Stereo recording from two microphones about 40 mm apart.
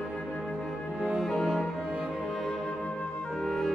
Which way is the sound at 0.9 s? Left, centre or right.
Right.